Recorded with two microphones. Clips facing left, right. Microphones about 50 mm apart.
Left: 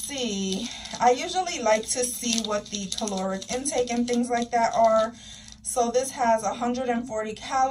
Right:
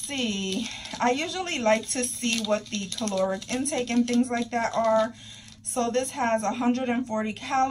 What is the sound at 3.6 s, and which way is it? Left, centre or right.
A woman's voice, right.